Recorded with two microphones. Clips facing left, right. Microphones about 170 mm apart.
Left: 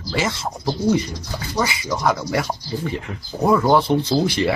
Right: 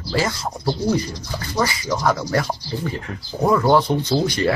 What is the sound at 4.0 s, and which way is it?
Speech, 30° left (ahead or behind).